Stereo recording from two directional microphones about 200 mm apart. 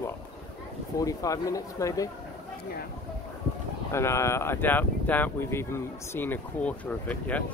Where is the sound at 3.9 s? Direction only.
15° left (ahead or behind).